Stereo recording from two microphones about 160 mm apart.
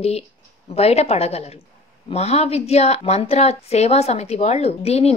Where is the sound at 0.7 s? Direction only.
40° left (ahead or behind).